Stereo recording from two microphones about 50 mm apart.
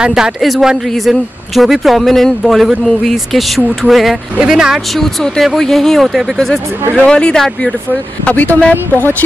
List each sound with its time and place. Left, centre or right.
0.0 s speech: centre
0.4 s speech: centre
4.4 s speech: centre
4.9 s speech: centre
8.3 s speech: left